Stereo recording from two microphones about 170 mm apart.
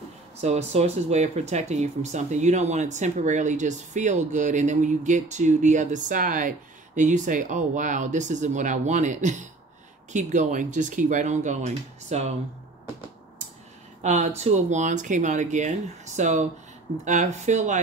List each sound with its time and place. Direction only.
0.4 s speech: 40° right (ahead or behind)
14.0 s speech: 45° right (ahead or behind)